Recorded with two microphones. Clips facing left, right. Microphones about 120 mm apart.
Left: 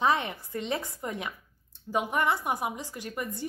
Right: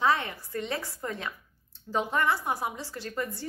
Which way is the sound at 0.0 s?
20° left (ahead or behind).